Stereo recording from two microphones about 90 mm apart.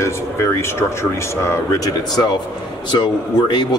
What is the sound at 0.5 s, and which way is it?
Speech, 30° left (ahead or behind).